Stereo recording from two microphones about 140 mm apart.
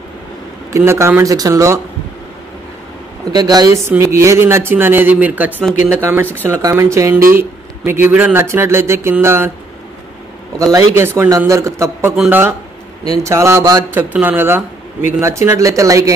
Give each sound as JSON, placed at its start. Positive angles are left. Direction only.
{"t": 0.7, "sound": "speech", "side_deg": -20}
{"t": 3.3, "sound": "a man's voice", "side_deg": -30}
{"t": 10.6, "sound": "a man's voice", "side_deg": -25}